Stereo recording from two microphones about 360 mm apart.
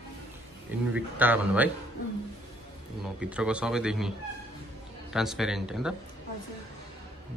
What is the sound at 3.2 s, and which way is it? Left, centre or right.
A woman's voice, centre.